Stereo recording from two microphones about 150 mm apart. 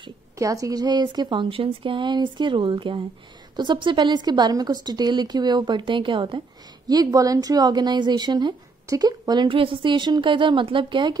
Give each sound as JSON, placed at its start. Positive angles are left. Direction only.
{"t": 0.4, "sound": "a woman's voice", "side_deg": -20}